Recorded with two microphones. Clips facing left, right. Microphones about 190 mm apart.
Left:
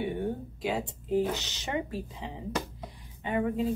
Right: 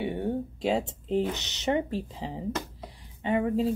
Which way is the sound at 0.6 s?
25° right (ahead or behind).